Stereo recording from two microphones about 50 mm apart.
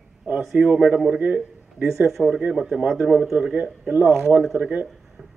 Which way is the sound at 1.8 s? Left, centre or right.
Right.